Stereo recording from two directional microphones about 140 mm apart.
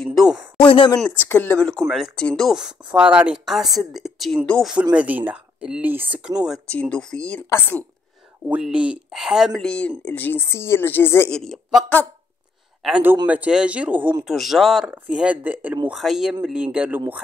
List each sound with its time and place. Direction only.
0.0 s speech: centre (ahead or behind)
0.6 s speech: 35° left (ahead or behind)
1.0 s speech: 15° left (ahead or behind)
4.9 s speech: 10° right (ahead or behind)
6.7 s speech: 10° left (ahead or behind)
8.5 s speech: 10° right (ahead or behind); by 11.3 s 15° left (ahead or behind)
11.3 s speech: centre (ahead or behind)
12.8 s speech: 10° right (ahead or behind)
15.9 s speech: centre (ahead or behind)